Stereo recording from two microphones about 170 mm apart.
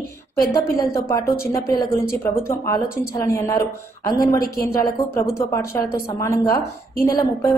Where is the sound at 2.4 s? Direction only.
15° left (ahead or behind).